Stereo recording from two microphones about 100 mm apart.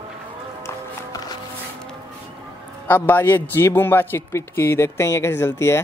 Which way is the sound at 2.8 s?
20° left (ahead or behind).